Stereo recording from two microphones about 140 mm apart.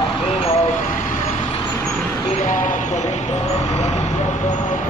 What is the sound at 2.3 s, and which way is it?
Vehicle, 65° left (ahead or behind).